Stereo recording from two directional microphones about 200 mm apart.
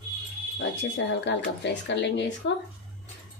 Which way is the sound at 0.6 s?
60° left (ahead or behind).